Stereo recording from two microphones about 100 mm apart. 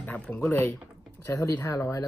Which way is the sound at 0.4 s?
25° left (ahead or behind).